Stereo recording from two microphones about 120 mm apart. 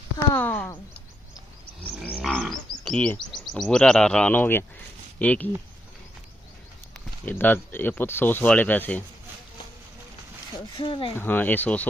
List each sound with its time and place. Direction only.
0.3 s a sound: 15° left (ahead or behind)
2.2 s livestock: centre (ahead or behind)
2.9 s speech: 5° left (ahead or behind)
7.2 s speech: 15° left (ahead or behind)
10.8 s speech: 45° left (ahead or behind)
11.1 s speech: 15° left (ahead or behind)